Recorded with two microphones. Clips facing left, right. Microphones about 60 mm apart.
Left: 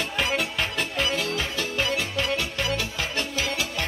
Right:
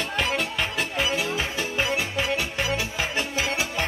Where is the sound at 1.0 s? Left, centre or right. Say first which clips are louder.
Right 1 dB; centre.